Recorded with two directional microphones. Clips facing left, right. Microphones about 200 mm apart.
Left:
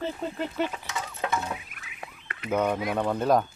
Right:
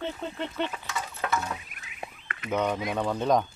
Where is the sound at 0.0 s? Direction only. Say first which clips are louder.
Left 2 dB; 5° left (ahead or behind).